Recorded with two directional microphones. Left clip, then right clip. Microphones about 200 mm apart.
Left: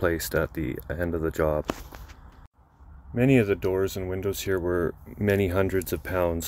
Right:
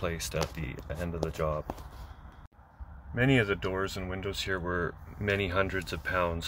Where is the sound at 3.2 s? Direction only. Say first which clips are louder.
Left 5 dB; 45° left (ahead or behind).